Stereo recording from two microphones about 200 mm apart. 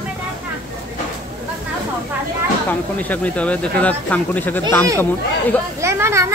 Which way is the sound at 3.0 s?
5° left (ahead or behind).